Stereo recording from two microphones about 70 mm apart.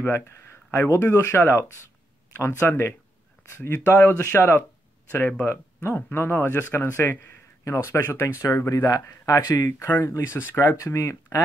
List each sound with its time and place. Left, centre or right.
0.7 s speech: left